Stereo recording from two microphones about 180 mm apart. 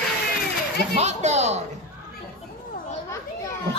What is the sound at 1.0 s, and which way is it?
Speech, 40° right (ahead or behind).